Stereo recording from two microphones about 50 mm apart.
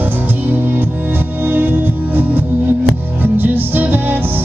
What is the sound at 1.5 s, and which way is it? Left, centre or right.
Music, right.